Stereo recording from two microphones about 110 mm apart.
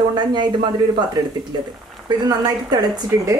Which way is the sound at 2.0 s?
40° right (ahead or behind).